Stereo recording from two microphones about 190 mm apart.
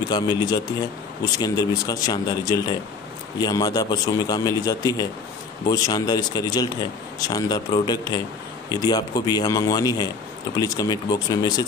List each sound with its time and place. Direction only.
0.1 s speech: 20° left (ahead or behind)